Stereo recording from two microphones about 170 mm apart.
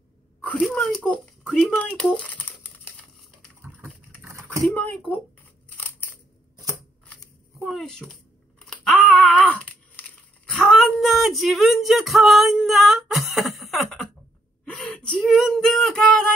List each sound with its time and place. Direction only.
0.4 s a sound: 5° left (ahead or behind)
3.6 s typing: 15° right (ahead or behind)
4.6 s speech: 5° left (ahead or behind)
7.1 s shuffling cards: 5° left (ahead or behind)
8.6 s a sound: 5° left (ahead or behind)
14.6 s speech: 5° left (ahead or behind)